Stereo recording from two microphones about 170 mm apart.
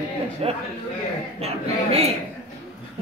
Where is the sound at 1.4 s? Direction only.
35° right (ahead or behind).